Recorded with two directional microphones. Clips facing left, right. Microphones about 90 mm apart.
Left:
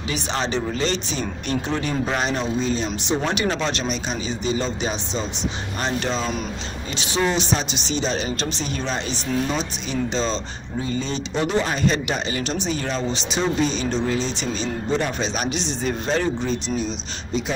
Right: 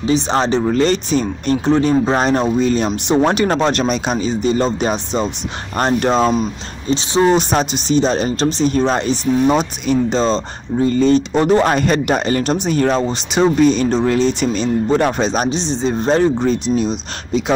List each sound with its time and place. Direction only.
0.0 s speech: 35° right (ahead or behind)
2.6 s speech: 60° right (ahead or behind)
3.3 s speech: 45° right (ahead or behind)
3.8 s speech: 70° right (ahead or behind)
4.2 s speech: 45° right (ahead or behind)
6.9 s speech: 30° right (ahead or behind)
7.2 s speech: 45° right (ahead or behind)
16.7 s speech: 70° right (ahead or behind)